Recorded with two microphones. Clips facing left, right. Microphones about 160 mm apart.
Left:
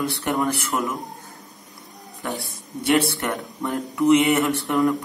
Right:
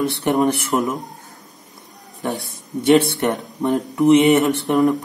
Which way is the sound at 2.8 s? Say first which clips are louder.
Right 6 dB; 20° right (ahead or behind).